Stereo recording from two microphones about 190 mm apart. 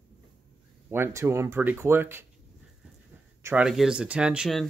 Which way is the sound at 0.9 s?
15° right (ahead or behind).